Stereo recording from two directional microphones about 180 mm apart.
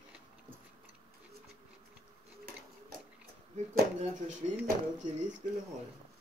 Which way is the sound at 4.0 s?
40° right (ahead or behind).